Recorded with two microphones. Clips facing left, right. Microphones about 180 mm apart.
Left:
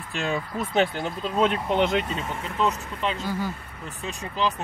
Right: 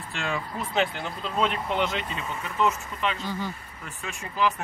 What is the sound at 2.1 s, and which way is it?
Speech, 35° left (ahead or behind).